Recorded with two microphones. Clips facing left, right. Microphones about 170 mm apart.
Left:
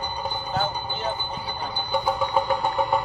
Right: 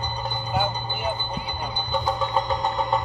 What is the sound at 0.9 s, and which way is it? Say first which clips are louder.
Train: right 1 dB; 15° right (ahead or behind).